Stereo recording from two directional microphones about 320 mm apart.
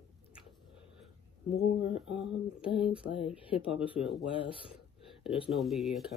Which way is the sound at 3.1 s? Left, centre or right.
Centre.